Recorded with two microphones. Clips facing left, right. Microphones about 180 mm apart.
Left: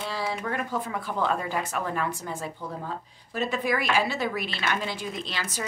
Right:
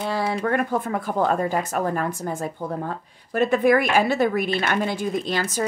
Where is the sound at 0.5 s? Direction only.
55° right (ahead or behind).